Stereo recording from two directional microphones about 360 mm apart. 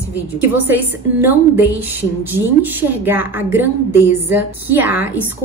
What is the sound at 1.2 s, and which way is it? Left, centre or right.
A woman's voice, centre.